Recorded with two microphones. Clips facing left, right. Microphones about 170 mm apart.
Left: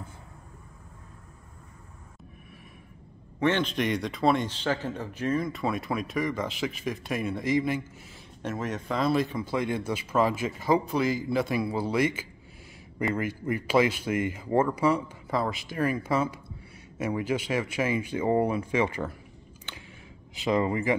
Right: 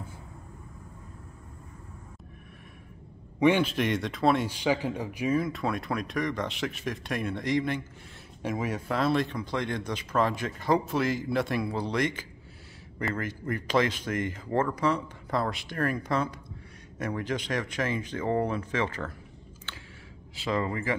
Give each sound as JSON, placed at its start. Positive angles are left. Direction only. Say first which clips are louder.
{"t": 3.3, "sound": "speech", "louder": "right 2 dB", "side_deg": -10}
{"t": 4.5, "sound": "speech", "louder": "right 2 dB", "side_deg": -10}
{"t": 8.4, "sound": "speech", "louder": "right 1 dB", "side_deg": -10}
{"t": 20.3, "sound": "speech", "louder": "left 4 dB", "side_deg": 15}